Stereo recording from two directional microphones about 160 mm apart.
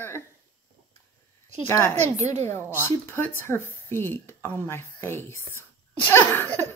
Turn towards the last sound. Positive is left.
turn(degrees=15)  # may be behind; listen again after turning